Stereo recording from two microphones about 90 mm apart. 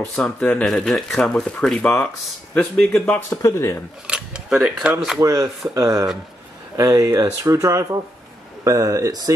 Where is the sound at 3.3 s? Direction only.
35° left (ahead or behind).